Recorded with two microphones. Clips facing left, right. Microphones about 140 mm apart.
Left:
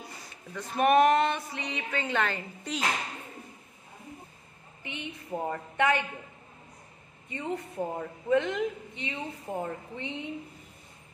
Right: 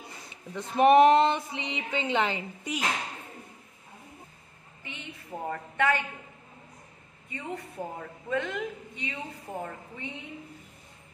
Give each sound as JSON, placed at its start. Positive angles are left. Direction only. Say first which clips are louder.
{"t": 0.5, "sound": "speech", "louder": "right 4 dB", "side_deg": -25}
{"t": 4.8, "sound": "a woman's voice", "louder": "left 4 dB", "side_deg": 20}
{"t": 7.3, "sound": "a woman's voice", "louder": "left 4 dB", "side_deg": 20}